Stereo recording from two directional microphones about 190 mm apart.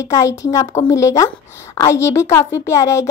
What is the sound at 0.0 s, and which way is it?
A woman's voice, 15° left (ahead or behind).